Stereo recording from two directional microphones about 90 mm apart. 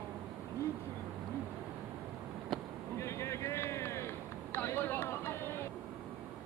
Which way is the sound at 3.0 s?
30° left (ahead or behind).